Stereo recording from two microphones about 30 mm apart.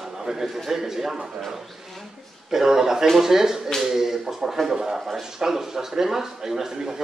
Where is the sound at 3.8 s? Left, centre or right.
Centre.